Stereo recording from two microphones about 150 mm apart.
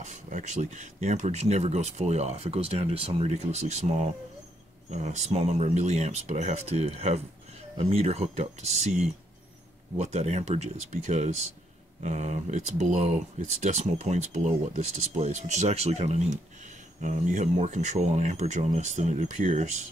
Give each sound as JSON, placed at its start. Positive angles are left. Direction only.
{"t": 0.0, "sound": "speech", "side_deg": -55}